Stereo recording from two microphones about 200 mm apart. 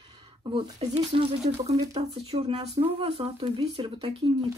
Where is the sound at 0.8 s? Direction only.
30° right (ahead or behind).